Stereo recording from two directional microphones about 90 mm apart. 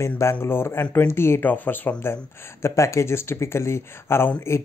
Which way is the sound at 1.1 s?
30° left (ahead or behind).